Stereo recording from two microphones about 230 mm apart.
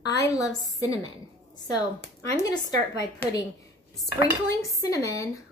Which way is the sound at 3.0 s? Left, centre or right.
Centre.